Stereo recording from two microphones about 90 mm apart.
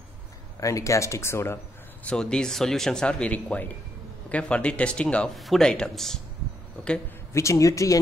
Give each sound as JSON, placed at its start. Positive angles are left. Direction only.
{"t": 0.6, "sound": "speech", "side_deg": 35}
{"t": 2.0, "sound": "speech", "side_deg": 10}
{"t": 5.3, "sound": "speech", "side_deg": 0}
{"t": 7.3, "sound": "speech", "side_deg": 35}